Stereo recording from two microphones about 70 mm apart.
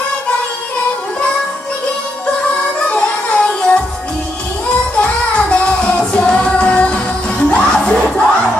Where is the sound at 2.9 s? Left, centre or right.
Centre.